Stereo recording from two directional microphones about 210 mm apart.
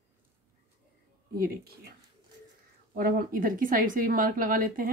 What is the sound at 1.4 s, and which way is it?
Speech, 45° right (ahead or behind).